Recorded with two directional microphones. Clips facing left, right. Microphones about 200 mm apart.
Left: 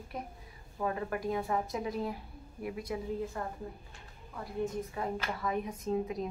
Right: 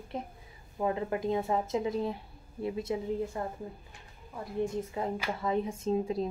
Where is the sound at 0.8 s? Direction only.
20° right (ahead or behind).